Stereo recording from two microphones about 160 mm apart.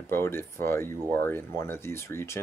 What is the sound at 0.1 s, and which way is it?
Speech, 15° left (ahead or behind).